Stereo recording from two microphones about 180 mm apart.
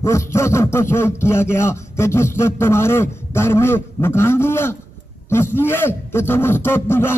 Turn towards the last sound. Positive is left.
turn(degrees=15)  # may be behind; listen again after turning